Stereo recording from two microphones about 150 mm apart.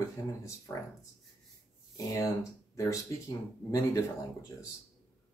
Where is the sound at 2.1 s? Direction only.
20° left (ahead or behind).